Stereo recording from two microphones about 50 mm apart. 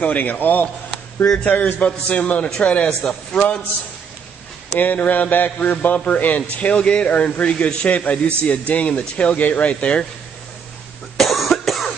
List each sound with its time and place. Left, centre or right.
0.0 s speech: left
0.9 s a sound: centre
1.4 s a man's voice: left
2.9 s a man's voice: centre
3.3 s a man's voice: left
4.7 s a man's voice: left
11.1 s cough: centre